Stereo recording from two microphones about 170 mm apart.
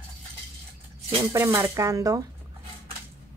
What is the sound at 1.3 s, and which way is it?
Speech, 20° right (ahead or behind).